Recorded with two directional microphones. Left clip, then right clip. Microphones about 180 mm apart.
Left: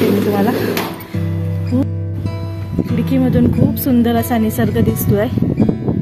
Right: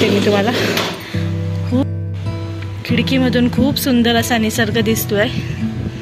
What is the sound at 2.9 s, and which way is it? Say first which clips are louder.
Speech: right 2 dB; 25° left (ahead or behind).